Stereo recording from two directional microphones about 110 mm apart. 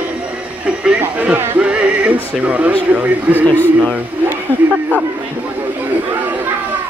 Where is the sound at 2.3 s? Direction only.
15° right (ahead or behind).